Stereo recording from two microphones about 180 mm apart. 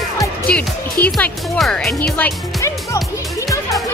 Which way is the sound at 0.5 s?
5° left (ahead or behind).